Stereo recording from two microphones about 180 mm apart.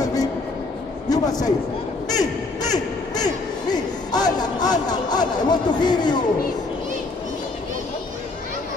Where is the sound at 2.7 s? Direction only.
20° left (ahead or behind).